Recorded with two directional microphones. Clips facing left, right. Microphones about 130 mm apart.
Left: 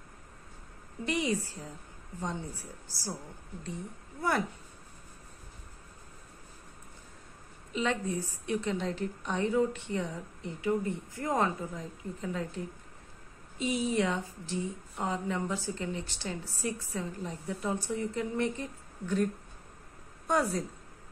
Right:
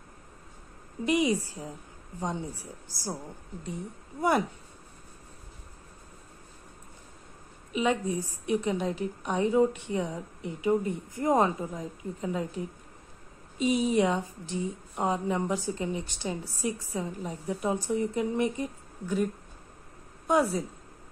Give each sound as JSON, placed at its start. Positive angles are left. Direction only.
{"t": 1.0, "sound": "a woman's voice", "side_deg": -15}
{"t": 2.9, "sound": "a woman's voice", "side_deg": -15}
{"t": 4.2, "sound": "a woman's voice", "side_deg": -15}
{"t": 7.7, "sound": "a woman's voice", "side_deg": -15}
{"t": 20.2, "sound": "a woman's voice", "side_deg": -10}